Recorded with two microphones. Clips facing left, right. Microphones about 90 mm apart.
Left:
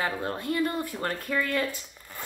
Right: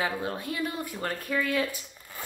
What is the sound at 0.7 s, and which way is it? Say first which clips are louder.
Speech: left 2 dB; centre (ahead or behind).